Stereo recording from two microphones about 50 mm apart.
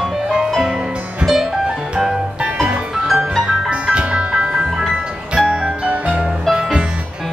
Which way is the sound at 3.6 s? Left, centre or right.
Right.